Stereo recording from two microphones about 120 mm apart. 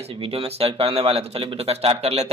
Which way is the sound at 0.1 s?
50° right (ahead or behind).